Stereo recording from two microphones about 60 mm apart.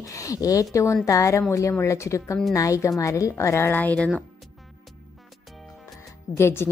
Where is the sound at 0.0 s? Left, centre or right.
Left.